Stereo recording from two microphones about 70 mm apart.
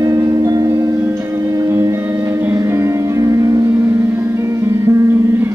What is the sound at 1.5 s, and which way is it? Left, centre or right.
Music, right.